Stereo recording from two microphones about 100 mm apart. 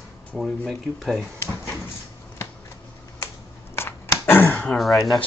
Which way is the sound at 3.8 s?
25° left (ahead or behind).